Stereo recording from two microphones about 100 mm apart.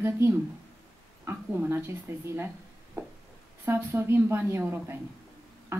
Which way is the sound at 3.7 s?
25° right (ahead or behind).